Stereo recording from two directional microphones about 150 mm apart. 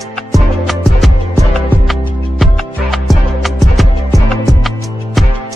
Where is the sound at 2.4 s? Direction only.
Centre (ahead or behind).